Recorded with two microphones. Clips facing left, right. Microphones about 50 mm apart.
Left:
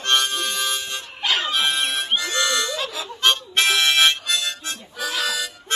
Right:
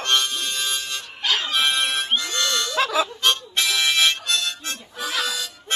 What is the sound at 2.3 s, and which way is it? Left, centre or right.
Harmonica, centre.